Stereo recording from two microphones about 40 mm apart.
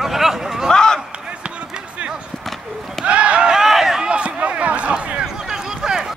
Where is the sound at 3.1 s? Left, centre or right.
Right.